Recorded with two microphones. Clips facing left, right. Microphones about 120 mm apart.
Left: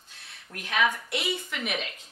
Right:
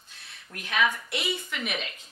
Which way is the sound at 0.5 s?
50° left (ahead or behind).